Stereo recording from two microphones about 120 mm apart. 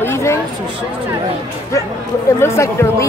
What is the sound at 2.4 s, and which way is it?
Speech, 20° left (ahead or behind).